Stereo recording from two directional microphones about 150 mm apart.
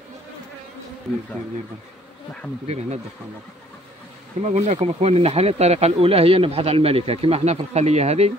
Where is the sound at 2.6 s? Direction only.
45° right (ahead or behind).